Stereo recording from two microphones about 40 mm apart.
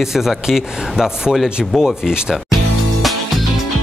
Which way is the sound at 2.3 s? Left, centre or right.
Centre.